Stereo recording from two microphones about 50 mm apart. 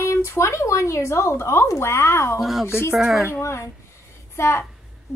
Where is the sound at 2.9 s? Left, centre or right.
Centre.